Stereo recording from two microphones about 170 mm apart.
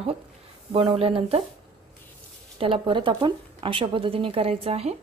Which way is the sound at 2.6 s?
30° right (ahead or behind).